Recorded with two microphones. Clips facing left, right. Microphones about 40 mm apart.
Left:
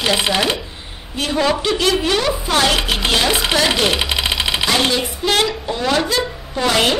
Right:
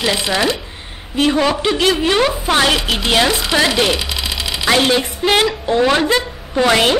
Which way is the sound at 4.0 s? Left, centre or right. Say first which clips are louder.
Left 3 dB; left.